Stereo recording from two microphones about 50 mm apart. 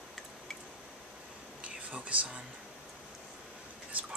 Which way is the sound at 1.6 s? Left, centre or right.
Right.